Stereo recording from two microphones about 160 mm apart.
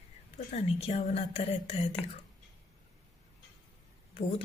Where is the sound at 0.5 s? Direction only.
40° left (ahead or behind).